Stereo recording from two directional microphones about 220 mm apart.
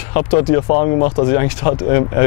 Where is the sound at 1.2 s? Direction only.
15° left (ahead or behind).